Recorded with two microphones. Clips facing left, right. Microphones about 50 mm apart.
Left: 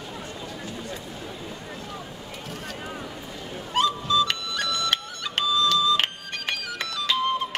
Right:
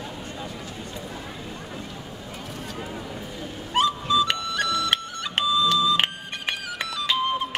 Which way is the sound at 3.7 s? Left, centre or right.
Centre.